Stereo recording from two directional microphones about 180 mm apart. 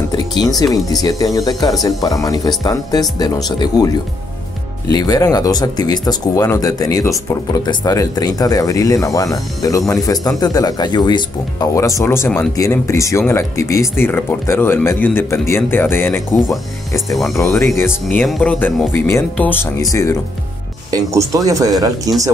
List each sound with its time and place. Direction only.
0.4 s speech: 20° left (ahead or behind)
4.9 s speech: 20° left (ahead or behind)
18.0 s speech: centre (ahead or behind); by 20.2 s 20° left (ahead or behind)
20.9 s speech: 20° right (ahead or behind)